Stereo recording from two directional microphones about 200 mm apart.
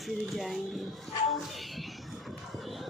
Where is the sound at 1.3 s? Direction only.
Centre (ahead or behind).